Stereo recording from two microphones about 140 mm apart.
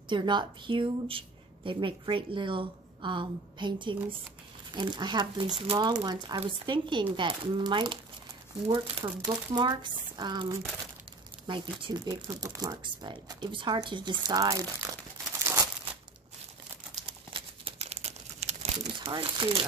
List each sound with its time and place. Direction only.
0.1 s a woman's voice: 35° right (ahead or behind)
15.4 s crumpling: 20° right (ahead or behind)
17.3 s crumpling: 45° right (ahead or behind)
18.9 s a woman's voice: 35° right (ahead or behind)